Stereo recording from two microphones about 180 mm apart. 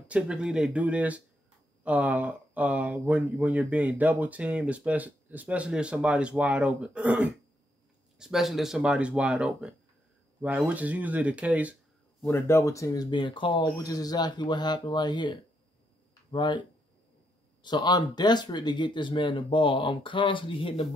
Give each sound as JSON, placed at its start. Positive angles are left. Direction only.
{"t": 0.1, "sound": "speech", "side_deg": -5}
{"t": 12.3, "sound": "speech", "side_deg": 15}
{"t": 17.6, "sound": "speech", "side_deg": 25}